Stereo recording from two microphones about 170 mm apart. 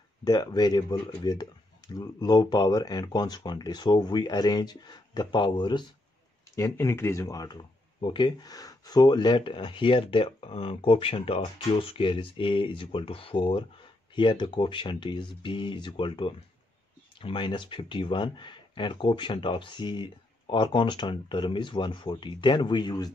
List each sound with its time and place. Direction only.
0.2 s speech: 25° left (ahead or behind)